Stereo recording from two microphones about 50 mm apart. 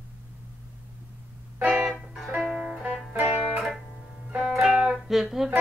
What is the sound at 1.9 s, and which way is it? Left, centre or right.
Music, centre.